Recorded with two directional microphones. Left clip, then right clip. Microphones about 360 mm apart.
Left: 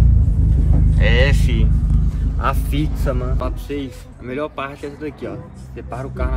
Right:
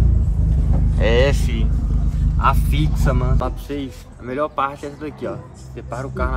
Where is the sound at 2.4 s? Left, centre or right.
Centre.